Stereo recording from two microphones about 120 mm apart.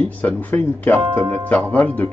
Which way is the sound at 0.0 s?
10° left (ahead or behind).